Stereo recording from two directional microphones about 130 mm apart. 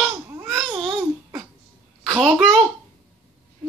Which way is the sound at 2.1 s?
5° left (ahead or behind).